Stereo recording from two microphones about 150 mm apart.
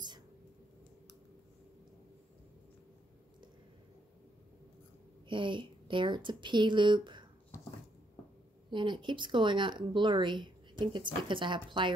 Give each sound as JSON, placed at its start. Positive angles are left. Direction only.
{"t": 5.3, "sound": "speech", "side_deg": -35}
{"t": 8.6, "sound": "speech", "side_deg": -30}